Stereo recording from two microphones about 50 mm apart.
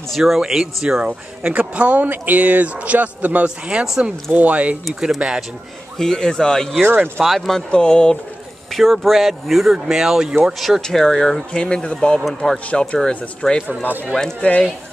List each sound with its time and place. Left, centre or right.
0.1 s speech: centre
1.0 s speech: right
3.4 s speech: centre
5.9 s speech: centre
6.8 s speech: right
7.2 s speech: centre
7.7 s speech: centre
8.7 s speech: centre
10.8 s speech: centre
13.4 s speech: centre
14.4 s speech: left